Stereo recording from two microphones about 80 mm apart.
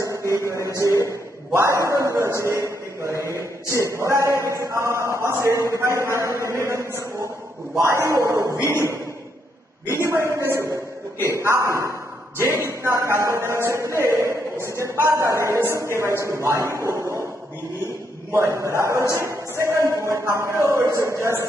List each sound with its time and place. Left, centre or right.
0.0 s a sound: right
1.5 s speech: right
9.8 s speech: right
18.3 s speech: right